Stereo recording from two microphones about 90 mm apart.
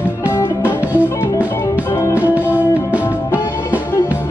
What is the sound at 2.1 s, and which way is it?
Music, 15° right (ahead or behind).